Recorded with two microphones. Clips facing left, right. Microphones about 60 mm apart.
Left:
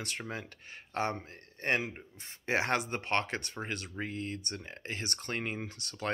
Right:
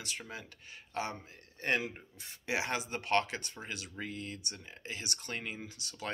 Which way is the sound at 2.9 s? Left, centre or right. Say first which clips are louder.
Right 1 dB; left.